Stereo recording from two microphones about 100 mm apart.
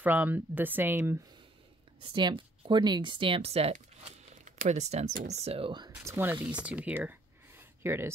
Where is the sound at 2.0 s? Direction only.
55° right (ahead or behind); by 5.7 s 75° right (ahead or behind).